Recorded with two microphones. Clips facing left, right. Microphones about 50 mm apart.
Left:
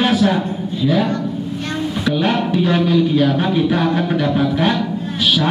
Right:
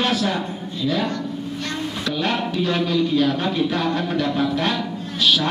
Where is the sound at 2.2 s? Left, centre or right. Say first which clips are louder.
Left 4 dB; centre.